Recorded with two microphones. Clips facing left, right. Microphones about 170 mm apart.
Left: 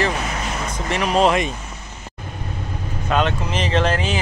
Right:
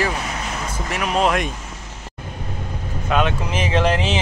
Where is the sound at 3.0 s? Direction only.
10° right (ahead or behind).